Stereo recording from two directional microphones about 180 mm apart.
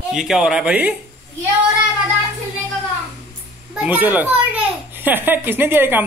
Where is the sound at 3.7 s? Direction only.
10° right (ahead or behind).